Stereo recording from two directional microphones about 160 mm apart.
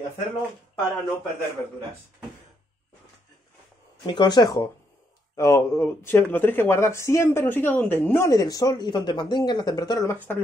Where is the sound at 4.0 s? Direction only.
25° left (ahead or behind).